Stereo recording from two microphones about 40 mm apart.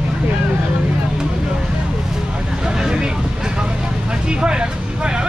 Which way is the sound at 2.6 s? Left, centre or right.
Centre.